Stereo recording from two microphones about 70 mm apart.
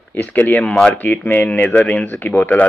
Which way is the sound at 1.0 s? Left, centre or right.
Left.